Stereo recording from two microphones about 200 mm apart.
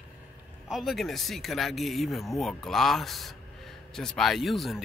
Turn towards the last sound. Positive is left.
turn(degrees=0)  # may be behind; listen again after turning